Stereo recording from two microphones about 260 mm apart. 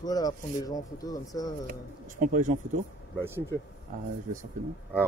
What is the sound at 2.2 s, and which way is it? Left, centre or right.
Speech, right.